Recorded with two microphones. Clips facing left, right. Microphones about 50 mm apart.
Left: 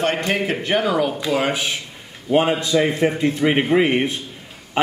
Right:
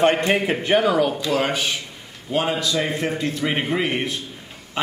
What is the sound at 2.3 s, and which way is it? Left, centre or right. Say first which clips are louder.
A man's voice: left 5 dB; left.